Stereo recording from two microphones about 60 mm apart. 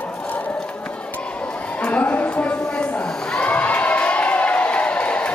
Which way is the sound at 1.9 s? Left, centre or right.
Left.